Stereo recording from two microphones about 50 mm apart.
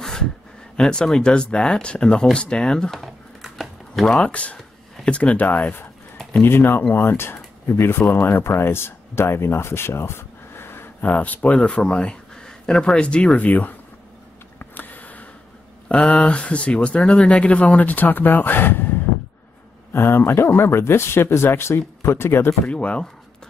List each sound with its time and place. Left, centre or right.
0.7 s speech: centre
3.0 s crumpling: centre
4.2 s speech: left
11.0 s speech: left
13.5 s speech: left
14.6 s a sound: left
15.9 s speech: left
22.7 s speech: left